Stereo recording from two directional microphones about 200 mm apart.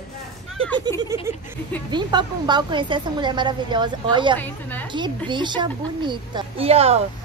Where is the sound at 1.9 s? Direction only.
20° right (ahead or behind).